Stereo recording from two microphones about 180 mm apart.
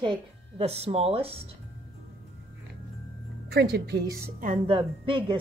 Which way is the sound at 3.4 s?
65° right (ahead or behind).